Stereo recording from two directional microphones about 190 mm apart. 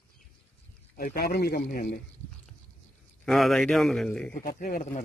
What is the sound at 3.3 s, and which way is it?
A man's voice, centre (ahead or behind).